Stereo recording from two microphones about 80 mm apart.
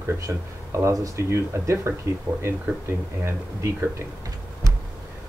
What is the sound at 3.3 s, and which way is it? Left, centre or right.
Speech, right.